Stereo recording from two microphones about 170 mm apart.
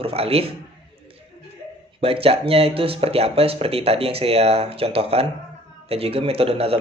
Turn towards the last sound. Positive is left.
turn(degrees=-35)  # may be behind; listen again after turning